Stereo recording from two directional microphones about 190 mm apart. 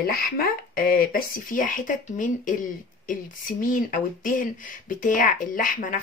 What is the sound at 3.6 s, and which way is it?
Speech, 45° left (ahead or behind).